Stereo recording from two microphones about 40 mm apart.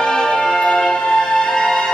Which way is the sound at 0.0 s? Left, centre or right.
Centre.